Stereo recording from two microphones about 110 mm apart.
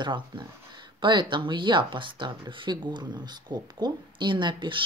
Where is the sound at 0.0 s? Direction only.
45° right (ahead or behind).